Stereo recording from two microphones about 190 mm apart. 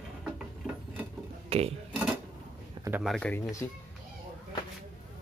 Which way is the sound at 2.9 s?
10° right (ahead or behind).